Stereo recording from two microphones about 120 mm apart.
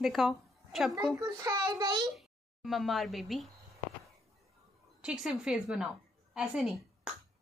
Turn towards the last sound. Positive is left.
turn(degrees=-5)  # may be behind; listen again after turning